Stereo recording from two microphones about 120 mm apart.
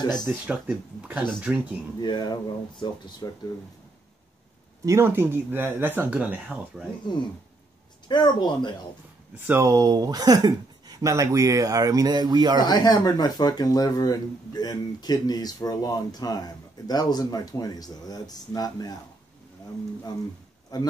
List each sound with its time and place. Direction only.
0.3 s speech: 10° right (ahead or behind)
2.0 s speech: 35° left (ahead or behind)
4.8 s speech: 20° right (ahead or behind)
8.1 s speech: 40° left (ahead or behind)
9.5 s speech: 25° right (ahead or behind)
12.6 s speech: 35° left (ahead or behind)
20.7 s speech: 35° left (ahead or behind)